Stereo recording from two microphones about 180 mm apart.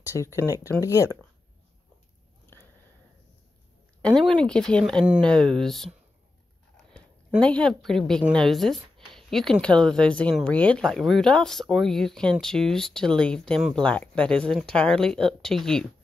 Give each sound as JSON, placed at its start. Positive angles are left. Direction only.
{"t": 0.1, "sound": "speech", "side_deg": 15}
{"t": 4.0, "sound": "speech", "side_deg": 5}
{"t": 7.3, "sound": "speech", "side_deg": 5}